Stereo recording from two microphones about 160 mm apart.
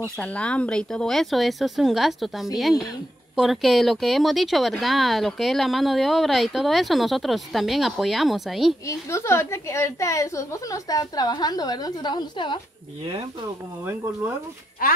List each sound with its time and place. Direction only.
0.0 s speech: 5° left (ahead or behind)
8.8 s a woman's voice: 15° left (ahead or behind)
13.8 s speech: 15° right (ahead or behind)
14.8 s speech: 65° left (ahead or behind)